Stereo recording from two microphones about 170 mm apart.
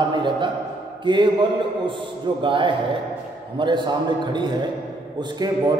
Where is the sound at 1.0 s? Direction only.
25° right (ahead or behind).